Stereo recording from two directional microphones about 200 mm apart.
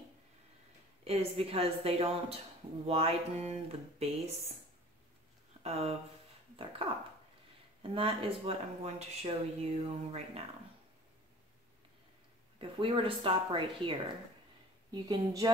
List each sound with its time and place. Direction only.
1.0 s speech: 30° right (ahead or behind)
5.6 s speech: 30° right (ahead or behind)
12.5 s speech: 30° right (ahead or behind)